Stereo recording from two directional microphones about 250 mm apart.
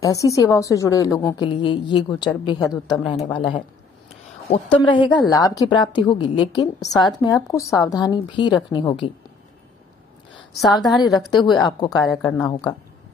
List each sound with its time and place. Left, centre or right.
0.0 s a woman's voice: centre
10.7 s a woman's voice: centre
11.2 s a woman's voice: centre